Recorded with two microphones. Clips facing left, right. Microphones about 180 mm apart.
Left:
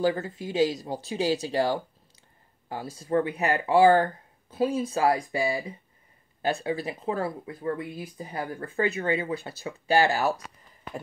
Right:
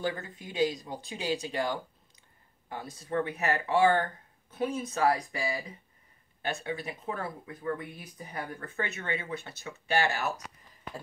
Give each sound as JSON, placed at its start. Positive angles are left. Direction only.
{"t": 0.0, "sound": "speech", "side_deg": 40}